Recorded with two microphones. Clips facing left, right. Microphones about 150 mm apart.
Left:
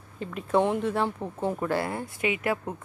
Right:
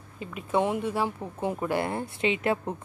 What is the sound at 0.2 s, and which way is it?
Speech, 5° right (ahead or behind).